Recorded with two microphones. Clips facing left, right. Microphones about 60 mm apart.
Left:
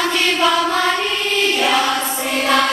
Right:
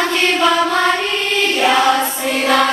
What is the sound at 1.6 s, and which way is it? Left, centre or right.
Choir, centre.